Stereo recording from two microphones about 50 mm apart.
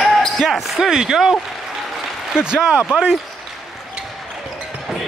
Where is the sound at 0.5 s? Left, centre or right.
Centre.